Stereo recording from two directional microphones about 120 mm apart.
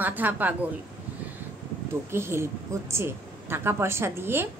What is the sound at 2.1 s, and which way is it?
A woman's voice, 20° right (ahead or behind).